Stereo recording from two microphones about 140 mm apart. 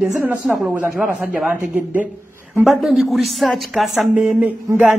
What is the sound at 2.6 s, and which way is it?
A woman's voice, centre (ahead or behind).